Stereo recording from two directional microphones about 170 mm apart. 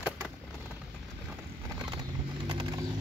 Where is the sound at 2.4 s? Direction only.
25° right (ahead or behind).